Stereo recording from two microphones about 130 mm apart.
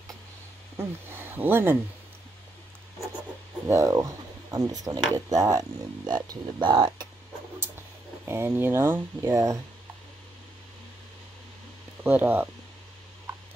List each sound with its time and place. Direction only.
0.7 s speech: 15° right (ahead or behind)
3.6 s speech: 25° right (ahead or behind)
8.3 s speech: 15° right (ahead or behind)
12.0 s speech: 15° right (ahead or behind)